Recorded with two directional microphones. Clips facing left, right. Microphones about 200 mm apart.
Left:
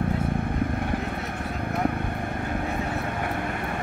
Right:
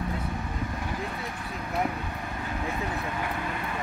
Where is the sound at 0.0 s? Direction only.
55° left (ahead or behind).